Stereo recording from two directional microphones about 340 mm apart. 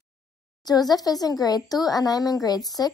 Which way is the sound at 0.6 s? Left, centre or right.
Centre.